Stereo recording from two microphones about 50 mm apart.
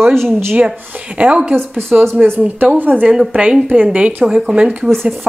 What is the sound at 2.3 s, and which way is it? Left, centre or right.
Speech, right.